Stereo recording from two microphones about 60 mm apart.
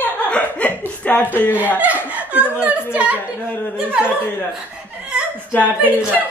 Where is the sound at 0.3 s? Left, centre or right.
Left.